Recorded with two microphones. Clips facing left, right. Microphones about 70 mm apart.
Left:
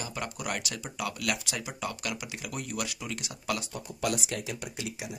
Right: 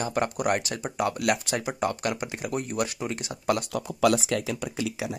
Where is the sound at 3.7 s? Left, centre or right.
Right.